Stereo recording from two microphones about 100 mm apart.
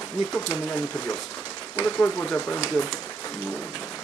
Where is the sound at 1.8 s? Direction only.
20° left (ahead or behind).